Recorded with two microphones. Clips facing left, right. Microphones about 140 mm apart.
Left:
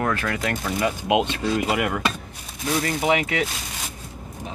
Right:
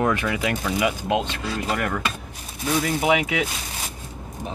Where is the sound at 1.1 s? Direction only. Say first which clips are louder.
Left 3 dB; 15° left (ahead or behind).